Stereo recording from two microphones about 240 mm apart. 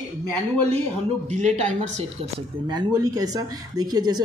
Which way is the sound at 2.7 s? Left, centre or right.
Centre.